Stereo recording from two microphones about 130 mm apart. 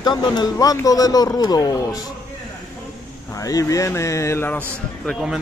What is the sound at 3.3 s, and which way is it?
A man's voice, 25° left (ahead or behind).